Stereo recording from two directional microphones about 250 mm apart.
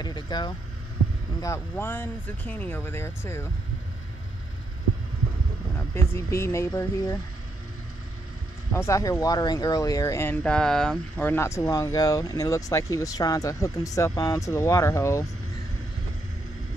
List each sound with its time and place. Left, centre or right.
0.0 s speech: centre
5.8 s speech: centre
8.7 s speech: centre